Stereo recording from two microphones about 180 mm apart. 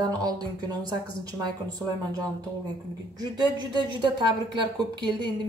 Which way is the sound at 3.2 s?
20° right (ahead or behind).